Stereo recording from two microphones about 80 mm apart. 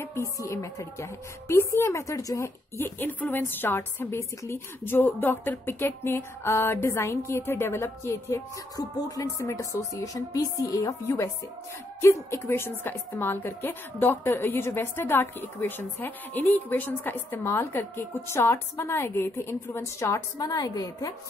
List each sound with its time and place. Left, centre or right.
0.0 s a woman's voice: left
2.8 s a woman's voice: left
8.7 s a woman's voice: left